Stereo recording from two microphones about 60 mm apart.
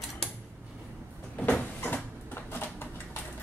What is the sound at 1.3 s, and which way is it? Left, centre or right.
Vehicle, left.